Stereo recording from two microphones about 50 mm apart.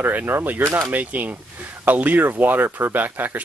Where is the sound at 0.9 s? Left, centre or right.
Right.